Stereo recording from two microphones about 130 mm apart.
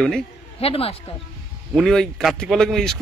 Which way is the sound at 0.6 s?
45° left (ahead or behind).